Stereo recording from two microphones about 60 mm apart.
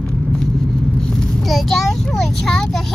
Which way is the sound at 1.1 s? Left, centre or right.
Centre.